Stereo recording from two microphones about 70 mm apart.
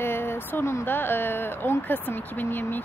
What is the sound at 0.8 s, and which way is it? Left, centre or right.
Speech, left.